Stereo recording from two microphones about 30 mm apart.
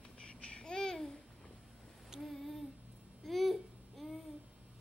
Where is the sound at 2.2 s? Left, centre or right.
Centre.